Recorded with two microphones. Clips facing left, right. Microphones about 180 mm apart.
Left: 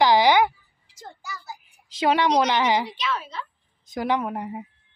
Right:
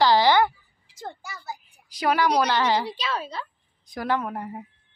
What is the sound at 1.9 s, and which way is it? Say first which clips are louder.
A woman's voice: left 2 dB; 25° left (ahead or behind).